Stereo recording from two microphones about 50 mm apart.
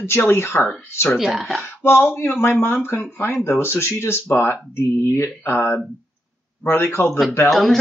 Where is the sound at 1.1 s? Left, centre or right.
Centre.